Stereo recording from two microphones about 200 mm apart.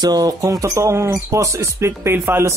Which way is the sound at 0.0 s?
20° right (ahead or behind).